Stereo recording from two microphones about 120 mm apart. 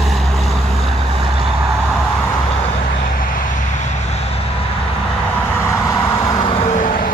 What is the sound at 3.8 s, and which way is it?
Vehicle, 75° left (ahead or behind).